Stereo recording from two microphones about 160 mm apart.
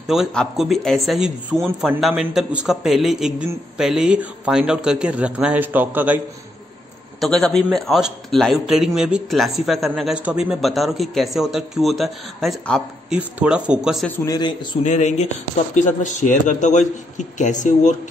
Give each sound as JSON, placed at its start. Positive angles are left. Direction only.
{"t": 0.0, "sound": "a man's voice", "side_deg": -5}
{"t": 7.2, "sound": "a man's voice", "side_deg": 5}
{"t": 14.2, "sound": "a man's voice", "side_deg": 25}
{"t": 14.8, "sound": "speech", "side_deg": 45}